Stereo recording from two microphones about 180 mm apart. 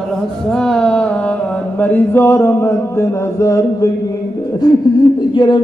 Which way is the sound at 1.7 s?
10° left (ahead or behind).